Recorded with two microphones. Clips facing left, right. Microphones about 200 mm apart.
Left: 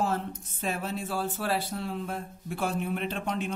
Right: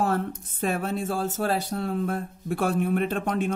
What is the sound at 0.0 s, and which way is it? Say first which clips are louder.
Speech: right 4 dB; 55° right (ahead or behind).